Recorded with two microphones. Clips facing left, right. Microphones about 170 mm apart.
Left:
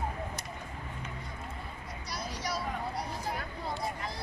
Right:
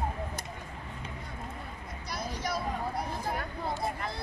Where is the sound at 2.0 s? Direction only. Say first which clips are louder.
Right 2 dB; 55° right (ahead or behind).